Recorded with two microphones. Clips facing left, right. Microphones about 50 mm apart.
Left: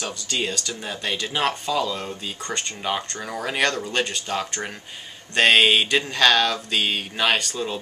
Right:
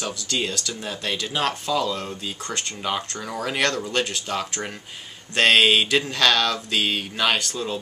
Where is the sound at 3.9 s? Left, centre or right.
Centre.